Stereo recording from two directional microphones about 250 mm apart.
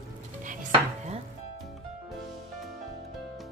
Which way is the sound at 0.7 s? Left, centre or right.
Right.